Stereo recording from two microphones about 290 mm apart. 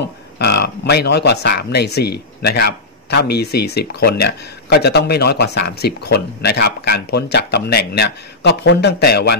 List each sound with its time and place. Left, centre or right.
0.4 s speech: left